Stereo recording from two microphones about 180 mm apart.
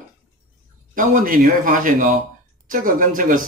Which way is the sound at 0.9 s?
50° right (ahead or behind).